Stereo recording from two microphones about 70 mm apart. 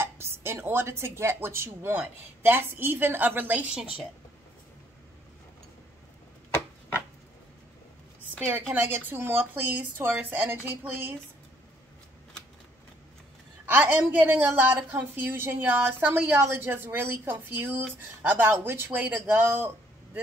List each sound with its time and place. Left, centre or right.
0.0 s a woman's voice: right
8.5 s a woman's voice: right
13.7 s a woman's voice: right